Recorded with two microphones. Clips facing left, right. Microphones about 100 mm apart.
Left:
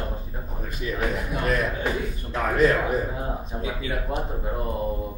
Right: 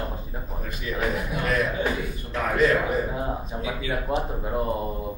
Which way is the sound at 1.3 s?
40° left (ahead or behind).